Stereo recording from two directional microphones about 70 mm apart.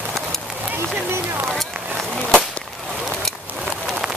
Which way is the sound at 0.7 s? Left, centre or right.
Right.